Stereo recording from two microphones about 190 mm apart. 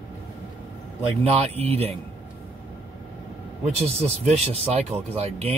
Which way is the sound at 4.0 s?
35° right (ahead or behind).